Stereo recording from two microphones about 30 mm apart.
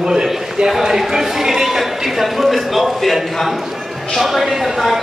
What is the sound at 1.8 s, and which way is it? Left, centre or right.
A man's voice, centre.